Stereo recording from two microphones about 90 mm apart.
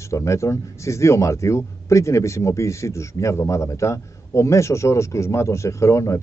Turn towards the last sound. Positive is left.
turn(degrees=35)  # may be behind; listen again after turning